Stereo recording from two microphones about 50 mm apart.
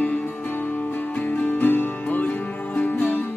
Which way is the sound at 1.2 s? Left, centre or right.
Left.